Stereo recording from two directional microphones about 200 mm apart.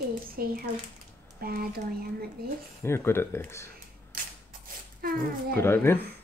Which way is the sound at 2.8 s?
10° left (ahead or behind).